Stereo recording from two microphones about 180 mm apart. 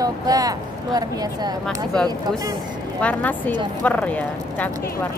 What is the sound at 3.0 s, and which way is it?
Speech, 10° left (ahead or behind).